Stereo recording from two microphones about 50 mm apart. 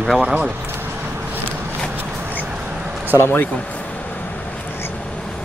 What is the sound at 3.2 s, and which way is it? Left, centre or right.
Speech, left.